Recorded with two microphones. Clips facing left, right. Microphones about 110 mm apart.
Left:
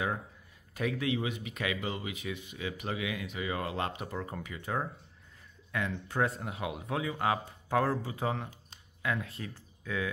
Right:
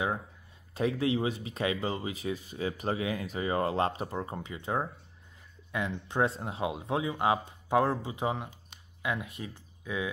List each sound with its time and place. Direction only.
0.7 s speech: 30° right (ahead or behind)